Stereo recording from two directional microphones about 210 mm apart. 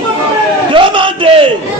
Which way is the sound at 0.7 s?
25° right (ahead or behind).